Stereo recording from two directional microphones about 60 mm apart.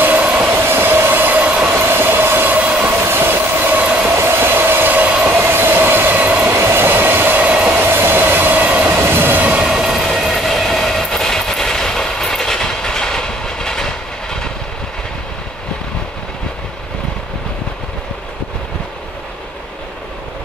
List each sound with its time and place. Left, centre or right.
0.0 s train: right
0.5 s train: right
1.7 s train: right
2.6 s train: right
3.0 s train: right
3.8 s train: right
4.1 s train: right
5.4 s train: right
6.4 s train: right
8.9 s train: right
9.5 s train: centre